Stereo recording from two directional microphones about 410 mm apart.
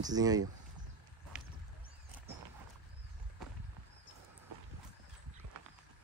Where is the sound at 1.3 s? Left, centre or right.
Centre.